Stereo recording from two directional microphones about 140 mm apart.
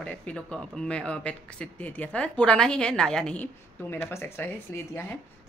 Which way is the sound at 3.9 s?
15° left (ahead or behind).